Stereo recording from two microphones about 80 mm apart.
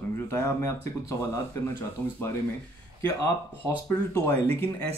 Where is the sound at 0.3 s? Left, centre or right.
Left.